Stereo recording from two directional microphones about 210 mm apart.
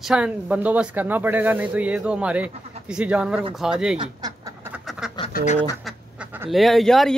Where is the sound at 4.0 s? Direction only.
20° right (ahead or behind).